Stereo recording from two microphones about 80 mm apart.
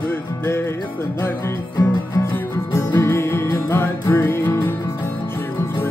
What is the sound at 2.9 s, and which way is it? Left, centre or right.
Music, left.